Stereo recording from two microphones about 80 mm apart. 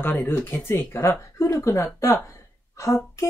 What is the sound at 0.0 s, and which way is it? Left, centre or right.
Speech, left.